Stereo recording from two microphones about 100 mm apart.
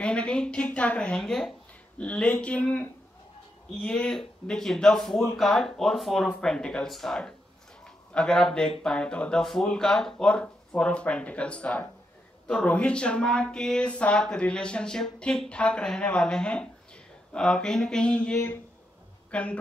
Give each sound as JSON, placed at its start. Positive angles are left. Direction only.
{"t": 0.0, "sound": "speech", "side_deg": 10}
{"t": 7.8, "sound": "a sound", "side_deg": 10}
{"t": 8.8, "sound": "speech", "side_deg": 10}